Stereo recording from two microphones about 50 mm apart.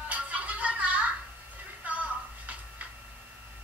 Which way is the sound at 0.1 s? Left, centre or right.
Right.